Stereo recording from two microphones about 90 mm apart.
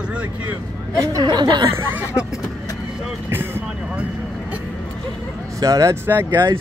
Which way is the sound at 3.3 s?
25° right (ahead or behind).